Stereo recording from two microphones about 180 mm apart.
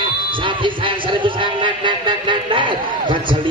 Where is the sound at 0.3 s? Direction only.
30° right (ahead or behind).